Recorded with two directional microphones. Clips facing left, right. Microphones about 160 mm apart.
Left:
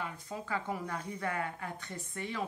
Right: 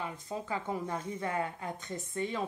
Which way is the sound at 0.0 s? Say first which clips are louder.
Right 2 dB; 20° right (ahead or behind).